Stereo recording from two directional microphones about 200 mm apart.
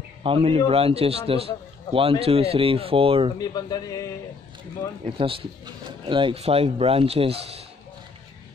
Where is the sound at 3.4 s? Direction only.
20° left (ahead or behind).